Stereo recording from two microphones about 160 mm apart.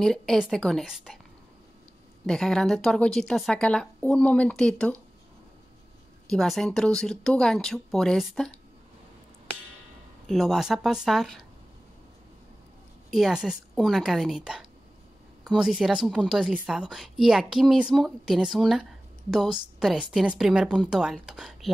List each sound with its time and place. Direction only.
0.0 s a woman's voice: centre (ahead or behind)
2.2 s a woman's voice: 5° left (ahead or behind)
6.2 s a woman's voice: centre (ahead or behind)
10.2 s a woman's voice: centre (ahead or behind)
13.1 s a woman's voice: 5° right (ahead or behind)